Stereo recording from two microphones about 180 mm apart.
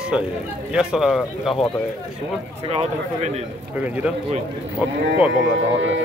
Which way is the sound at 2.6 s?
35° right (ahead or behind).